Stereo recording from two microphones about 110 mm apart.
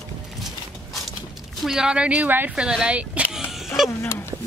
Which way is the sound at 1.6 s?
5° right (ahead or behind).